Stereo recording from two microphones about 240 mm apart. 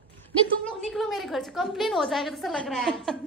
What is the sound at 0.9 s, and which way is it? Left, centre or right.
A woman's voice, centre.